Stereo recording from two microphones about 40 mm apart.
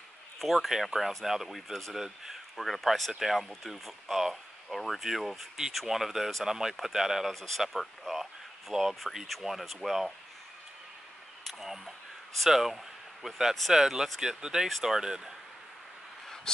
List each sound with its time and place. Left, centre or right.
0.4 s speech: centre
2.5 s speech: centre
7.3 s speech: centre
11.4 s speech: centre
14.7 s speech: centre
16.5 s vehicle: centre